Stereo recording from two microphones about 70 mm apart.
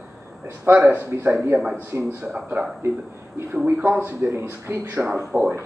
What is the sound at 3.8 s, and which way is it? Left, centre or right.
Speech, right.